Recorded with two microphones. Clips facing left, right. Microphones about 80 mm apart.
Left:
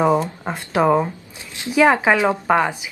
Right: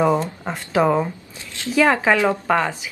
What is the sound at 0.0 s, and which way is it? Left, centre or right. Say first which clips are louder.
A woman's voice: left 1 dB; centre.